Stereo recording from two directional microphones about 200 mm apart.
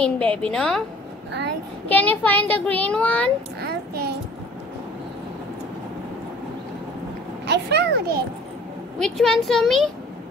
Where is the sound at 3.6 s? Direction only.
55° right (ahead or behind).